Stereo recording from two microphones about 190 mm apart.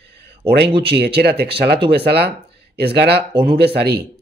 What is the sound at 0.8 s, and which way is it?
Speech, 55° right (ahead or behind).